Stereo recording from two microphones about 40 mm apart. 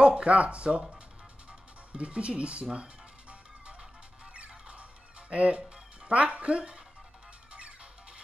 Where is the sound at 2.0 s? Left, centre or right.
Right.